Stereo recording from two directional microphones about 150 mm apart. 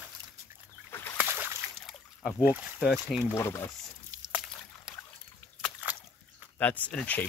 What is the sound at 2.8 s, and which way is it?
Speech, centre (ahead or behind).